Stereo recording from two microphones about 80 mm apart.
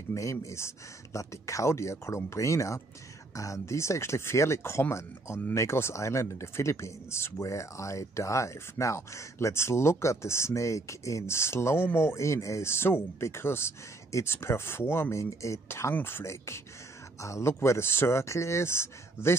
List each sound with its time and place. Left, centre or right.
0.1 s speech: left